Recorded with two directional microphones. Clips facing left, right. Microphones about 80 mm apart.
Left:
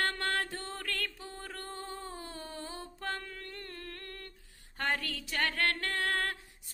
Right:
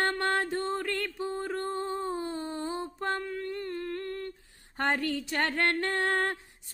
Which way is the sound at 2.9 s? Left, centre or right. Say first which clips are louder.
Right 7 dB; right.